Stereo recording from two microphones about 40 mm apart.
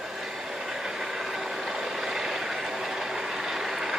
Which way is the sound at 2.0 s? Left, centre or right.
Centre.